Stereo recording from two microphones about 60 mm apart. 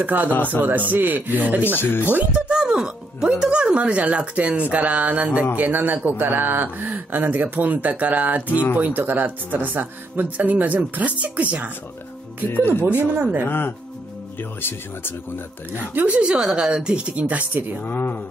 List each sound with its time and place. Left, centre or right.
0.0 s speech: right
0.3 s speech: left
0.6 s speech: right
1.8 s speech: left
2.0 s speech: right
5.6 s speech: right
12.5 s speech: left
12.8 s speech: right
13.5 s speech: left
15.8 s speech: right
16.2 s speech: centre
17.8 s speech: left